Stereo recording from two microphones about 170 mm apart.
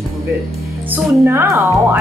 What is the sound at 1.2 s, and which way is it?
Speech, 15° right (ahead or behind).